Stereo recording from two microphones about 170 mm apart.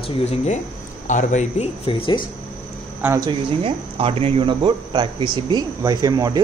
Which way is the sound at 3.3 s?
35° right (ahead or behind).